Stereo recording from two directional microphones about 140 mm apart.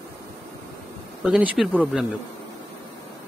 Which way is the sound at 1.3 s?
10° right (ahead or behind).